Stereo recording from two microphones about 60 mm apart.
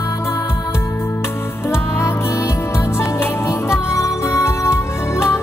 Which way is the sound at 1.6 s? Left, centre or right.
Left.